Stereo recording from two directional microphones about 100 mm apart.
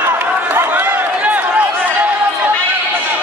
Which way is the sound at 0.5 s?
20° right (ahead or behind).